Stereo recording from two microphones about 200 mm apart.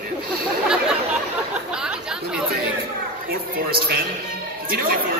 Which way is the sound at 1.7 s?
5° right (ahead or behind).